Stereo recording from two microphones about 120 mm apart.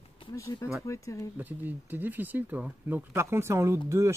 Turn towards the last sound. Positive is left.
turn(degrees=-25)  # may be behind; listen again after turning